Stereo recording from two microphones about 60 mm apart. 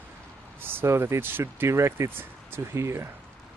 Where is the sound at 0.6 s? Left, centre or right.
Right.